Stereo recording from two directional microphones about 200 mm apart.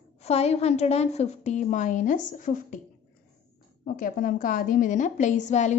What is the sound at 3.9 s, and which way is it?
A woman's voice, 45° left (ahead or behind).